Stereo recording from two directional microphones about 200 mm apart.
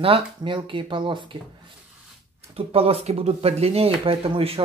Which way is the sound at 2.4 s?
30° right (ahead or behind).